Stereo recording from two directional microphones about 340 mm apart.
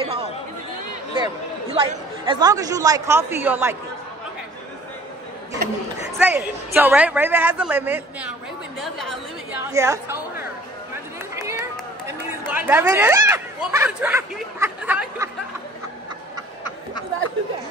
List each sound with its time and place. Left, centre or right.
0.0 s chatter: centre
1.1 s speech: centre
6.1 s a woman's voice: centre
12.1 s speech: centre